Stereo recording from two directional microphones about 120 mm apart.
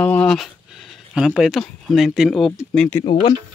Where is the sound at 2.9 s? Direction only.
25° left (ahead or behind).